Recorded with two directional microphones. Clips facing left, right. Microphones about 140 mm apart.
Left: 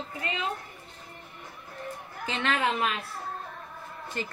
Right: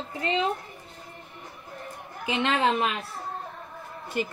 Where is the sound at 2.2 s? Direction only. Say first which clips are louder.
Right 4 dB; 15° right (ahead or behind).